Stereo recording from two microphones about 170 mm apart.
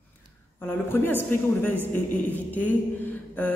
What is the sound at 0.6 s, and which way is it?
A man's voice, 10° left (ahead or behind).